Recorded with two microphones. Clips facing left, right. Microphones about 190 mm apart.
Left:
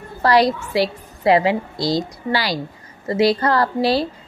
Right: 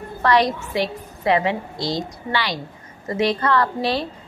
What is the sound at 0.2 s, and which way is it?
A woman's voice, 35° left (ahead or behind).